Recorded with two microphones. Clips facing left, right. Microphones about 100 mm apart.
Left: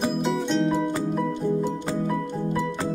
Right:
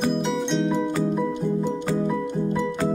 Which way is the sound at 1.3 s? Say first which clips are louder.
Even; 15° right (ahead or behind).